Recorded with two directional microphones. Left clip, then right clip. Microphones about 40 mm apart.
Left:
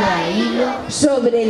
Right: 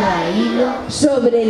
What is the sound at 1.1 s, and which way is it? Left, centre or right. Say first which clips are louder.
Speech: right 2 dB; centre.